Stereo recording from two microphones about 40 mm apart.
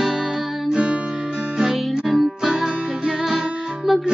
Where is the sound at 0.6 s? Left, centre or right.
Right.